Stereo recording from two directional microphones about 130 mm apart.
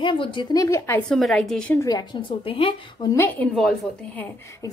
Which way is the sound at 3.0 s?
20° left (ahead or behind).